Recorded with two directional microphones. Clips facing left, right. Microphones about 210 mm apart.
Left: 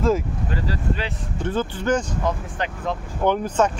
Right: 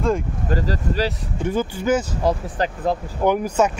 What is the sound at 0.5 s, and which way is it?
Speech, 40° right (ahead or behind).